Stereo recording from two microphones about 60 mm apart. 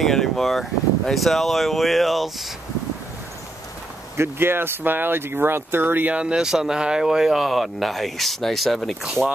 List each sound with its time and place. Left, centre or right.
0.0 s speech: centre
4.2 s speech: right
6.1 s speech: centre